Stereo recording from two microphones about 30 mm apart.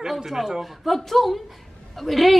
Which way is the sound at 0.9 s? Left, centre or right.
Centre.